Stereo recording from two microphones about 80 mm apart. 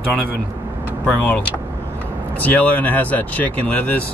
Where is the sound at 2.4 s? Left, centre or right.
Centre.